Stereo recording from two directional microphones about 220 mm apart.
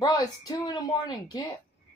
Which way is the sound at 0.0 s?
15° left (ahead or behind).